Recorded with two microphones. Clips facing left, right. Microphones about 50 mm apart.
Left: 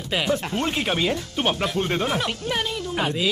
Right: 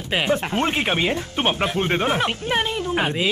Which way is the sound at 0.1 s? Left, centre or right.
Right.